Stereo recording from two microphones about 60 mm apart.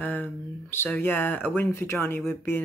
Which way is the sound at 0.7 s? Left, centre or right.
Left.